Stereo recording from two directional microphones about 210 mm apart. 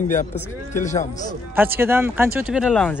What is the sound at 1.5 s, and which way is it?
Speech, 10° right (ahead or behind).